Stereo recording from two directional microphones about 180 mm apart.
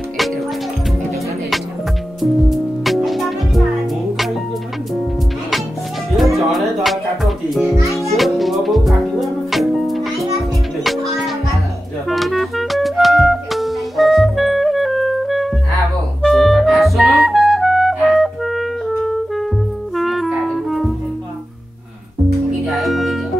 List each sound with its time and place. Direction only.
2.2 s music: centre (ahead or behind)
6.1 s music: centre (ahead or behind)
7.6 s music: 15° right (ahead or behind)
8.2 s music: centre (ahead or behind)
12.1 s music: centre (ahead or behind)
16.2 s clarinet: centre (ahead or behind)
20.0 s music: centre (ahead or behind)
22.7 s music: centre (ahead or behind)